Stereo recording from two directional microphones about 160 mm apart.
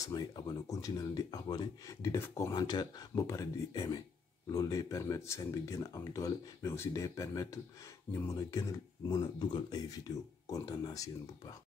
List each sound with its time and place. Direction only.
0.0 s speech: 25° left (ahead or behind)
2.5 s speech: 30° left (ahead or behind)